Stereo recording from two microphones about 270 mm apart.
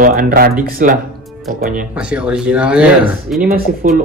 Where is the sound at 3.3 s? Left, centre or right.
Right.